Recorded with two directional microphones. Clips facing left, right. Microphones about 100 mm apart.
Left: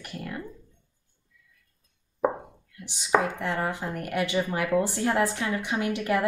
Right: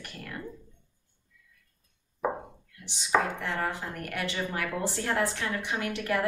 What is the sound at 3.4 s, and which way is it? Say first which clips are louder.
Speech: left 3 dB; 15° left (ahead or behind).